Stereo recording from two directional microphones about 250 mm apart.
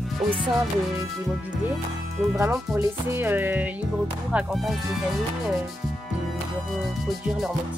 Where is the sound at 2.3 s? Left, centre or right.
Centre.